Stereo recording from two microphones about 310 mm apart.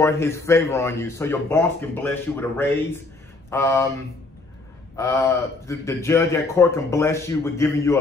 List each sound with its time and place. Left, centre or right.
0.0 s a man's voice: centre
4.9 s a man's voice: centre